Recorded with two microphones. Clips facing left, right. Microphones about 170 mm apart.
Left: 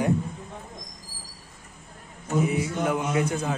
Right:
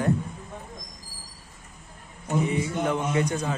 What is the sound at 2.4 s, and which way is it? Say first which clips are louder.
A man's voice: left 1 dB; 5° left (ahead or behind).